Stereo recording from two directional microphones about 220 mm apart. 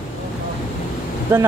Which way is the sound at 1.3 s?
10° right (ahead or behind).